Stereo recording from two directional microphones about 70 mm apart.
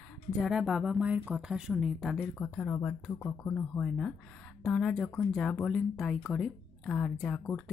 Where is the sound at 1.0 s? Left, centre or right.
Right.